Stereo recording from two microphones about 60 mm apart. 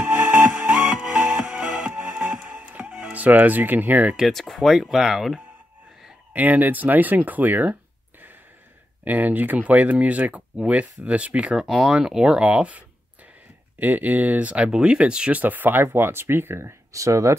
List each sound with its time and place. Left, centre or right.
0.0 s music: right
2.9 s speech: right
4.3 s speech: centre
6.3 s speech: right
9.0 s speech: right
11.5 s speech: centre; by 14.5 s right
14.5 s speech: centre
15.4 s speech: right
16.9 s speech: right